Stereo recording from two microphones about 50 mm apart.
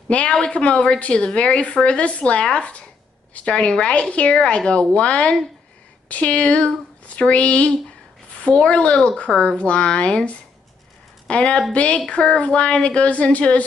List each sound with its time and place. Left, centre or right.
0.1 s a woman's voice: left